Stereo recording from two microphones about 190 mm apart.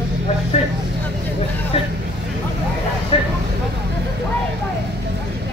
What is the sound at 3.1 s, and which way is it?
Speech, 30° left (ahead or behind).